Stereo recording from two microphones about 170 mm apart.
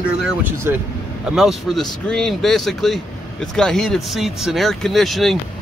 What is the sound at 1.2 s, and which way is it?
Speech, centre (ahead or behind).